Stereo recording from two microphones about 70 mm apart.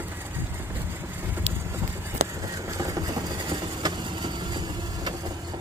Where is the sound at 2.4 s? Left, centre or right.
Right.